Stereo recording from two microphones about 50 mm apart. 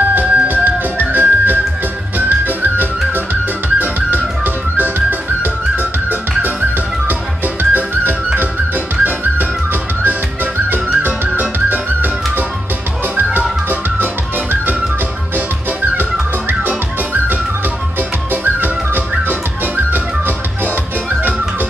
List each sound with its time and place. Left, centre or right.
0.1 s music: right